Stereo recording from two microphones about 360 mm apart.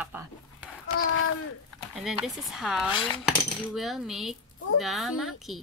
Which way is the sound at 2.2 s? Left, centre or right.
Centre.